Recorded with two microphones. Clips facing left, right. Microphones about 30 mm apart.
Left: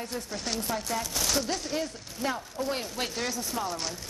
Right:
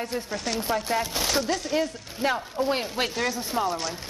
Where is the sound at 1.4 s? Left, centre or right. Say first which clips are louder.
Right 5 dB; centre.